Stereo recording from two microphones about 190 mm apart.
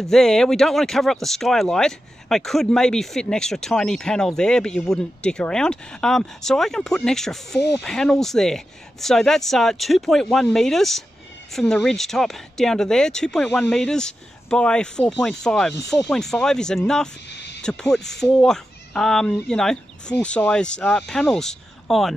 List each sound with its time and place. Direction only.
0.0 s speech: centre (ahead or behind)
17.3 s a sound: 65° left (ahead or behind)
17.6 s speech: 5° left (ahead or behind)